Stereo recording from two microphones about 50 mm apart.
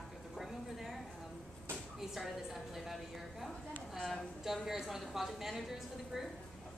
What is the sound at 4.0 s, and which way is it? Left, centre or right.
Speech, centre.